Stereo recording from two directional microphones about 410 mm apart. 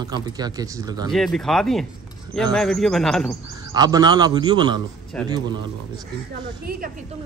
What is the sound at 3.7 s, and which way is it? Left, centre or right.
Speech, centre.